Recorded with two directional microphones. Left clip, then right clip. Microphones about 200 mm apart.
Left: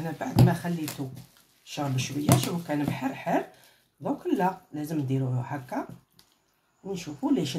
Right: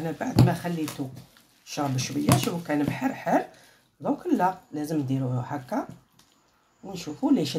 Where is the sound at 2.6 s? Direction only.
20° right (ahead or behind).